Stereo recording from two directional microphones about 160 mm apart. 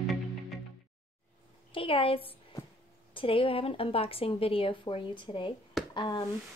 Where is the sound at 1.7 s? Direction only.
35° left (ahead or behind).